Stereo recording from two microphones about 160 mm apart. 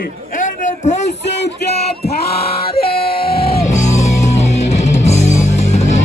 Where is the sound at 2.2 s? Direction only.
75° left (ahead or behind).